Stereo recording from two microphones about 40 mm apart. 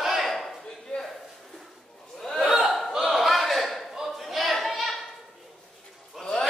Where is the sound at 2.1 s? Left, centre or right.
Centre.